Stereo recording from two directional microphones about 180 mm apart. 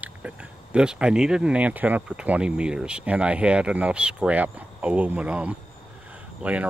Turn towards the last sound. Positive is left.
turn(degrees=-5)  # may be behind; listen again after turning